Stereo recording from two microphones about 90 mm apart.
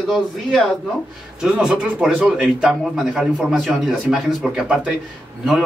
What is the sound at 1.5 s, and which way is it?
Speech, 10° right (ahead or behind).